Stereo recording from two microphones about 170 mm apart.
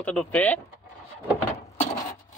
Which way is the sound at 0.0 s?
5° left (ahead or behind).